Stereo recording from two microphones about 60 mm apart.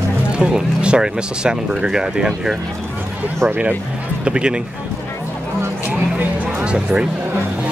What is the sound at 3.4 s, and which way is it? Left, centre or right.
Speech, right.